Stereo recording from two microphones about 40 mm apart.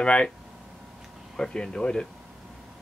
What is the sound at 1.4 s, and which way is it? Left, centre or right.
Speech, centre.